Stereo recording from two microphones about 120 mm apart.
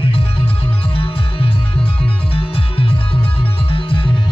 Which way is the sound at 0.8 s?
50° left (ahead or behind).